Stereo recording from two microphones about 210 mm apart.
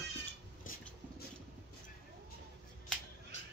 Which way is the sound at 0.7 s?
40° left (ahead or behind).